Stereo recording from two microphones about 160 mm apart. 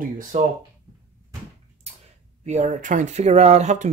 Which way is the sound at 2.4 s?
50° right (ahead or behind).